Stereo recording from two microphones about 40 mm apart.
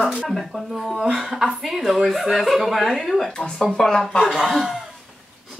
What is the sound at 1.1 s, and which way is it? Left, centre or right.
A woman's voice, centre.